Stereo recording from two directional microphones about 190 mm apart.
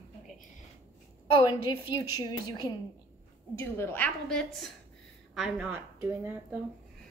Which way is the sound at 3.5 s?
10° left (ahead or behind).